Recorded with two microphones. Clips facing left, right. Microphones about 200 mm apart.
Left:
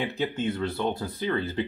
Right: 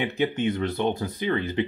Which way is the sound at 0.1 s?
15° right (ahead or behind).